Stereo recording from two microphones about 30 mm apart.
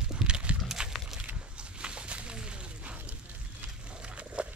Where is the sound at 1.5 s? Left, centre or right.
Right.